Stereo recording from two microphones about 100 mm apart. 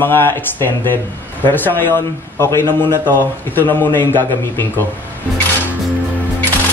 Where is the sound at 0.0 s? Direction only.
20° left (ahead or behind).